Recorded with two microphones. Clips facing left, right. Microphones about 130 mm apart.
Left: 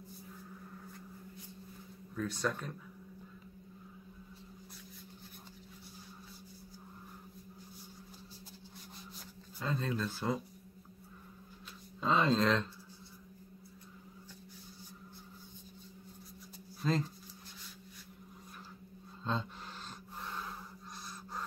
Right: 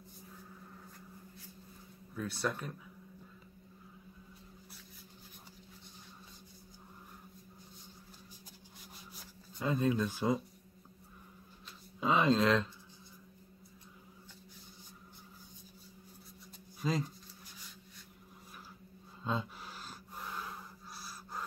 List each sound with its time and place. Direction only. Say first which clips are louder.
2.1 s speech: left 1 dB; 5° right (ahead or behind)
9.6 s speech: right 5 dB; 15° right (ahead or behind)
12.0 s a sound: right 1 dB; 10° right (ahead or behind)
12.3 s speech: right 2 dB; 5° right (ahead or behind)
16.8 s speech: left 1 dB; 10° right (ahead or behind)
19.3 s a sound: even; 10° right (ahead or behind)